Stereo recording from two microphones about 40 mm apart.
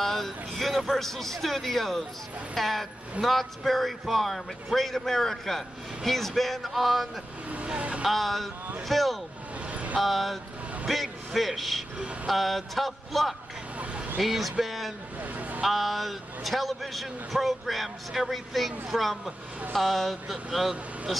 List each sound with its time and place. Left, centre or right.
0.0 s a man's voice: centre
7.5 s speech: right
8.0 s a man's voice: centre
9.7 s vehicle: right
9.9 s a man's voice: centre